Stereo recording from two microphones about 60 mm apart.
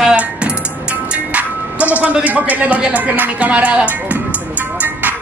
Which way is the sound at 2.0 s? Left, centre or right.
Right.